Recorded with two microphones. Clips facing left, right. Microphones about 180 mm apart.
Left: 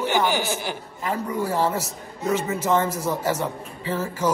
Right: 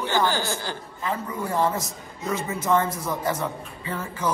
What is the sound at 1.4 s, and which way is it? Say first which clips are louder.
Music: even; 30° left (ahead or behind).